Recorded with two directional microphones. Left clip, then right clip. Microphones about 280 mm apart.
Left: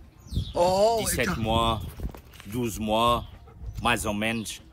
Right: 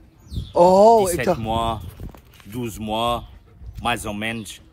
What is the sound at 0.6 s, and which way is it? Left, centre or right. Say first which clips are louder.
Speech: right 9 dB; right.